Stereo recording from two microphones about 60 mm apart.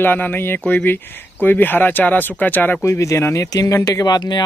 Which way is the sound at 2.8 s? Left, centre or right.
Left.